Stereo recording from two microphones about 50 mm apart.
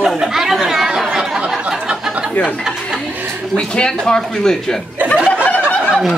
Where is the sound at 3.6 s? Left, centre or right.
Centre.